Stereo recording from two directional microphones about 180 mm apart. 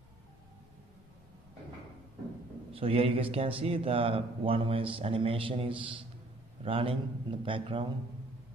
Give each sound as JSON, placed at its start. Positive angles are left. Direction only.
{"t": 2.7, "sound": "a man's voice", "side_deg": -30}